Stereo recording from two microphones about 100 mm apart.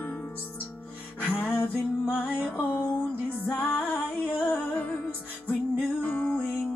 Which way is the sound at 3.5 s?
15° left (ahead or behind).